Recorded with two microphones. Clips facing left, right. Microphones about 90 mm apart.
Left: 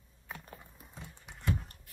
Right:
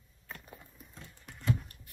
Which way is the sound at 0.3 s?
10° left (ahead or behind).